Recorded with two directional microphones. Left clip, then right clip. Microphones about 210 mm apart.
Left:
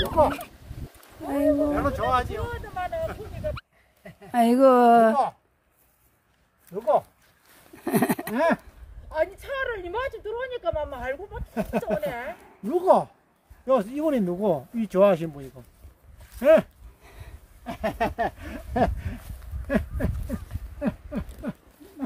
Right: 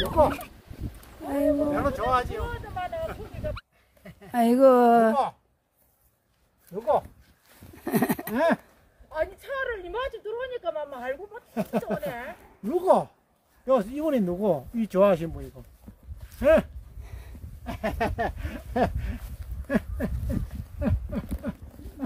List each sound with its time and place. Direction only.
0.0 s speech: 10° left (ahead or behind)
2.5 s speech: 55° left (ahead or behind)
4.3 s speech: 10° left (ahead or behind)
6.7 s speech: centre (ahead or behind)
7.5 s a sound: 10° left (ahead or behind)
9.1 s speech: 25° left (ahead or behind)
11.5 s speech: 5° left (ahead or behind)
12.1 s speech: 20° left (ahead or behind)
12.6 s speech: centre (ahead or behind)
16.3 s a sound: 5° left (ahead or behind)